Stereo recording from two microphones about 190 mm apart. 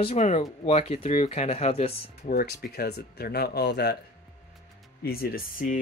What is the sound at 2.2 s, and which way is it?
Speech, 50° left (ahead or behind).